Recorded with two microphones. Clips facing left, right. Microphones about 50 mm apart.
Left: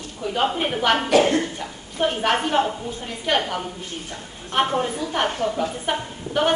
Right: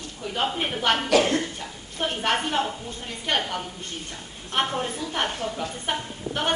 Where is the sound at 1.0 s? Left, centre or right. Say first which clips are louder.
Left 3 dB; left.